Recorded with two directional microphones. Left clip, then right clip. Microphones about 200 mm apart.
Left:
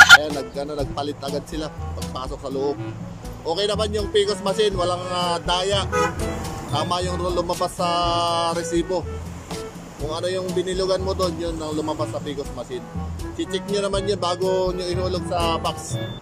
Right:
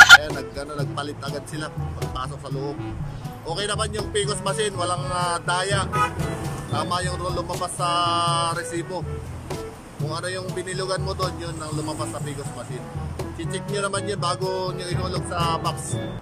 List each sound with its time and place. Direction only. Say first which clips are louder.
0.4 s a man's voice: left 4 dB; 15° left (ahead or behind)
3.4 s a man's voice: left 4 dB; 20° left (ahead or behind)
6.1 s speech: left 2 dB; centre (ahead or behind)
6.7 s a man's voice: left 2 dB; 15° left (ahead or behind)
10.0 s a man's voice: left 4 dB; 15° left (ahead or behind)
13.4 s a man's voice: left 4 dB; 15° left (ahead or behind)